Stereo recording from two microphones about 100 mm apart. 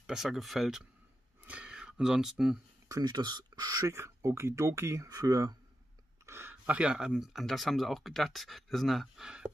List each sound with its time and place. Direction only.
0.0 s speech: 5° right (ahead or behind)
2.9 s speech: 45° right (ahead or behind)
6.2 s speech: 25° right (ahead or behind); by 9.5 s 5° right (ahead or behind)